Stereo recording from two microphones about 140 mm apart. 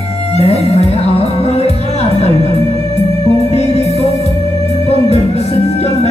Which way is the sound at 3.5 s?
50° left (ahead or behind).